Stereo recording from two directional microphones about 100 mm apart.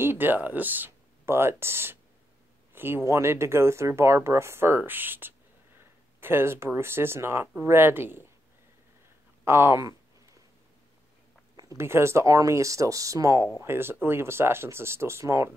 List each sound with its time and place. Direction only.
0.0 s speech: 20° right (ahead or behind)
2.7 s a sound: 20° right (ahead or behind)
3.1 s speech: 25° right (ahead or behind)
9.4 s speech: 25° right (ahead or behind)
11.5 s speech: 30° right (ahead or behind)